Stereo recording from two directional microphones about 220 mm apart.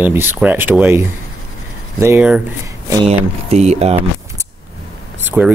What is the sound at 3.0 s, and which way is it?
Speech, 30° right (ahead or behind).